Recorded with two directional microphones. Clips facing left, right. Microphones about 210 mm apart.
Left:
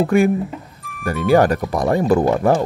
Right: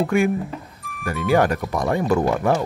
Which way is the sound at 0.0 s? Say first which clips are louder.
Left 4 dB; 35° left (ahead or behind).